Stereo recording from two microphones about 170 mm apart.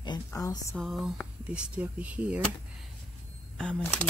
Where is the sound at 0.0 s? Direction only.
20° left (ahead or behind).